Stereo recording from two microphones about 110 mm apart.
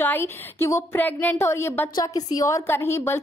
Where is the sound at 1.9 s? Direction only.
35° left (ahead or behind).